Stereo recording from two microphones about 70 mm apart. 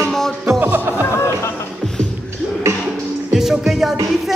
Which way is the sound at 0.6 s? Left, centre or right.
Right.